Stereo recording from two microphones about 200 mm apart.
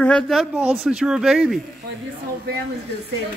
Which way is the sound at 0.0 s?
5° left (ahead or behind).